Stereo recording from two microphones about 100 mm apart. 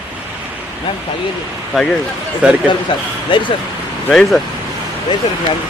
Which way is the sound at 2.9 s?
55° left (ahead or behind).